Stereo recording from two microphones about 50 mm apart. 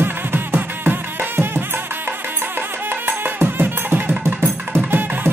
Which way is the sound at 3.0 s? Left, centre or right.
Right.